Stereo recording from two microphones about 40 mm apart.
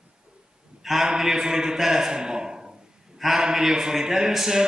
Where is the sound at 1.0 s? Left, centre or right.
Centre.